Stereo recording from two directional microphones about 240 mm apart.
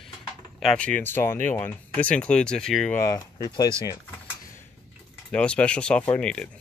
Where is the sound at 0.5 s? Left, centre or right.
Centre.